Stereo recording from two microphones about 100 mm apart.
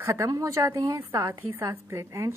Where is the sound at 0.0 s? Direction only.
30° right (ahead or behind).